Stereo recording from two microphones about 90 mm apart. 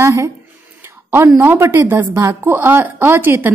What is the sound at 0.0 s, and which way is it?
A woman's voice, 35° right (ahead or behind).